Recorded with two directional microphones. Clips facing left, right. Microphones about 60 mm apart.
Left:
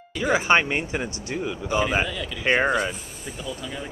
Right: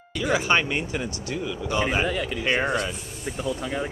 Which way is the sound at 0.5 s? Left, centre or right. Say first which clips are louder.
Left 2 dB; left.